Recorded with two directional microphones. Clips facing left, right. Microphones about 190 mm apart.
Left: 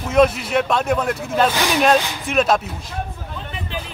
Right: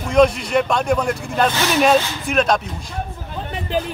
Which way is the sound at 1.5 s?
15° left (ahead or behind).